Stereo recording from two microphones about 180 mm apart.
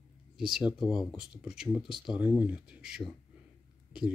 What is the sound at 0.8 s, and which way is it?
Speech, 25° left (ahead or behind).